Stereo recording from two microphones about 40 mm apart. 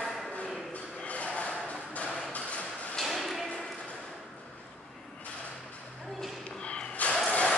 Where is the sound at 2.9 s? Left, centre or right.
Centre.